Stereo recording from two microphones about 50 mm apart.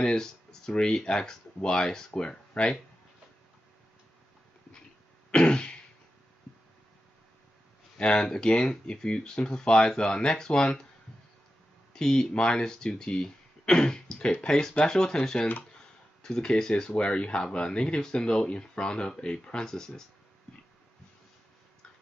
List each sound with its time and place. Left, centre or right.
0.0 s speech: centre
5.3 s throat clearing: centre
8.0 s speech: centre
11.9 s speech: centre